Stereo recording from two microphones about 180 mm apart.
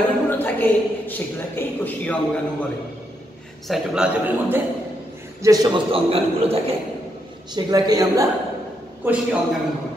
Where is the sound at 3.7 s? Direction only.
5° right (ahead or behind); by 6.7 s 30° right (ahead or behind).